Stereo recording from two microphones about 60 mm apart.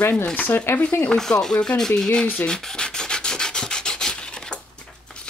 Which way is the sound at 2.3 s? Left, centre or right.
Centre.